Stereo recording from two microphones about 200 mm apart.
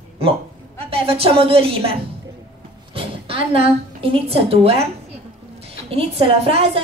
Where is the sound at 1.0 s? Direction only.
30° right (ahead or behind).